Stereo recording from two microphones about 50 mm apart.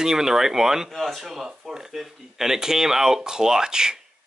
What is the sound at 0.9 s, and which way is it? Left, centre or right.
Speech, centre.